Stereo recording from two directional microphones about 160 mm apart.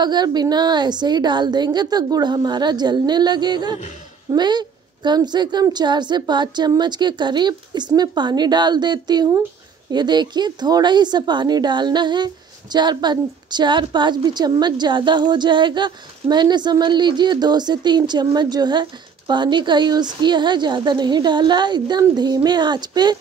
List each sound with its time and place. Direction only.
0.0 s speech: 25° right (ahead or behind)